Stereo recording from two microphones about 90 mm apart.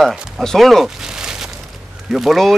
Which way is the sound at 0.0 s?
5° left (ahead or behind).